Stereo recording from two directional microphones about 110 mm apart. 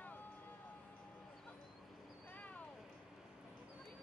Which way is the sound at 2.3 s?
15° left (ahead or behind).